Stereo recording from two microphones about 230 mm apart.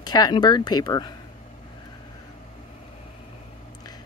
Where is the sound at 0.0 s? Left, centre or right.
Centre.